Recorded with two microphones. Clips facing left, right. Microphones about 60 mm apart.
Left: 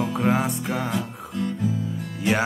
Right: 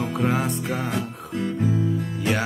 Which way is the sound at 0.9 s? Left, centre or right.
Right.